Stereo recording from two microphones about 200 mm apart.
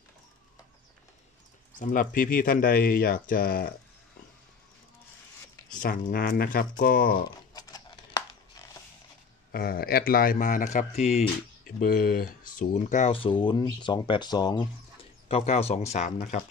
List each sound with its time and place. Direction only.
1.8 s speech: 45° left (ahead or behind)
5.8 s speech: 50° left (ahead or behind)
7.5 s a sound: 20° left (ahead or behind)
9.5 s speech: 50° left (ahead or behind); by 11.2 s 35° left (ahead or behind)
11.6 s speech: 45° left (ahead or behind); by 14.7 s 20° left (ahead or behind)
15.2 s speech: 30° left (ahead or behind)